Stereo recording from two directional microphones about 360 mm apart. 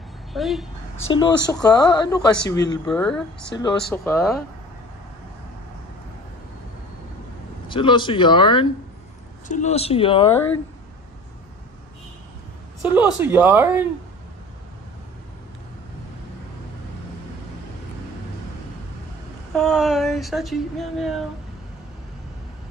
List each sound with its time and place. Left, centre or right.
0.3 s speech: centre
0.9 s speech: left
1.5 s speech: centre
7.6 s speech: centre
12.8 s speech: centre
19.5 s speech: centre